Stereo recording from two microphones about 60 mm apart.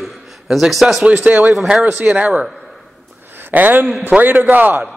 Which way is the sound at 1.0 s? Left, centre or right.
Centre.